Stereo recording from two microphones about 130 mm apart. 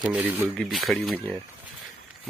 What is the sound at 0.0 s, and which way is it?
Speech, 10° right (ahead or behind).